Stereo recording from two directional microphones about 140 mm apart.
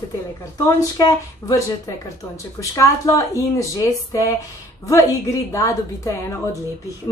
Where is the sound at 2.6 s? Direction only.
20° left (ahead or behind).